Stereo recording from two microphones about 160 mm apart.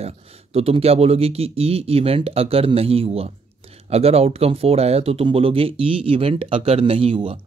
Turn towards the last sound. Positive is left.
turn(degrees=-35)  # may be behind; listen again after turning